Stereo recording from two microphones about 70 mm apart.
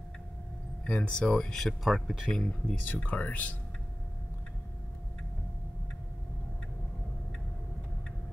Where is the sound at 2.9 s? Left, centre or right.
Centre.